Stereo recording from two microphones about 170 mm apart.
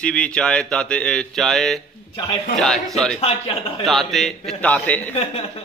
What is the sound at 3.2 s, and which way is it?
Speech, 35° left (ahead or behind).